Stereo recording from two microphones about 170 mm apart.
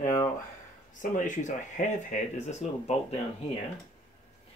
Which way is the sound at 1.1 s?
45° left (ahead or behind).